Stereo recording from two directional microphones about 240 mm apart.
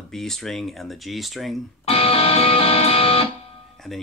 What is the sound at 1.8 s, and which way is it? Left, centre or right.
Music, left.